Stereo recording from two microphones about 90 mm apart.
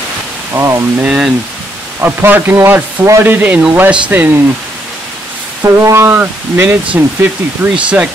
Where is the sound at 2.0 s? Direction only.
25° right (ahead or behind).